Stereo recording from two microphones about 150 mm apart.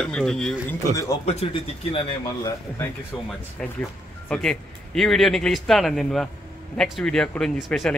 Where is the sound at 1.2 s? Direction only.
40° left (ahead or behind).